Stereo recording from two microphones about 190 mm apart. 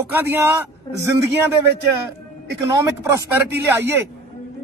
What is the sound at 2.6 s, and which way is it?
Speech, 15° right (ahead or behind).